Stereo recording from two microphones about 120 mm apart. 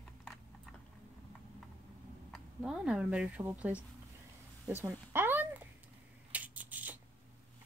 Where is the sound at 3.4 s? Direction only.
15° right (ahead or behind).